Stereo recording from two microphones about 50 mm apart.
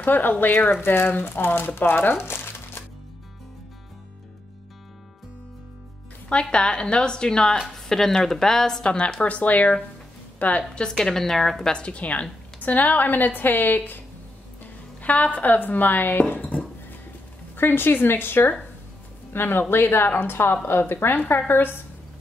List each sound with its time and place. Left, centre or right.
0.0 s a woman's voice: left
2.2 s crumpling: left
6.5 s a woman's voice: centre
8.8 s speech: centre
10.7 s a woman's voice: centre
11.7 s a woman's voice: left
17.6 s a woman's voice: left